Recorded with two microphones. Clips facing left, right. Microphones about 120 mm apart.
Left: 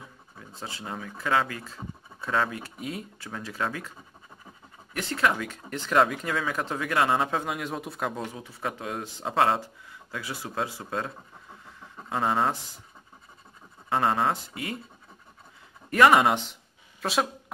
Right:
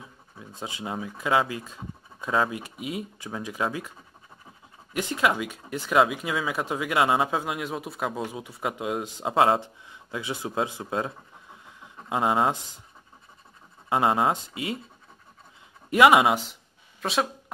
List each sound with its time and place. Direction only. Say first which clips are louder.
0.6 s speech: right 4 dB; 15° right (ahead or behind)
4.9 s speech: right 2 dB; 15° right (ahead or behind)
11.6 s a sound: left 1 dB; 15° right (ahead or behind)
13.8 s speech: right 2 dB; 15° right (ahead or behind)
15.9 s speech: right 1 dB; 10° right (ahead or behind)